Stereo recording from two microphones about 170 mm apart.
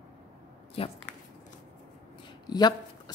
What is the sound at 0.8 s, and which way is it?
Speech, 35° left (ahead or behind).